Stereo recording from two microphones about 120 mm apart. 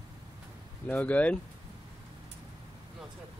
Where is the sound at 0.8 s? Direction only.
15° left (ahead or behind).